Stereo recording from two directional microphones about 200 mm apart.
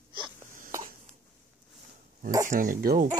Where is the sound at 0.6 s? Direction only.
40° right (ahead or behind).